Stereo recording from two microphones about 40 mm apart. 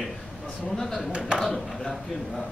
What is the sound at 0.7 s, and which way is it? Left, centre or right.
Speech, centre.